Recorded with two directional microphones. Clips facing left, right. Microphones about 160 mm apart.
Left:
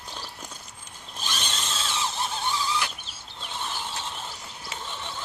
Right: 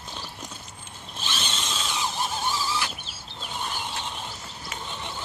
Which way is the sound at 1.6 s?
5° right (ahead or behind).